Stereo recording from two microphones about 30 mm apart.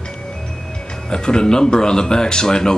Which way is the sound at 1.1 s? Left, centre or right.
Left.